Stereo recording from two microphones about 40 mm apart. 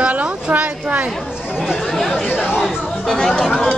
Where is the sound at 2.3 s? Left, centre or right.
Right.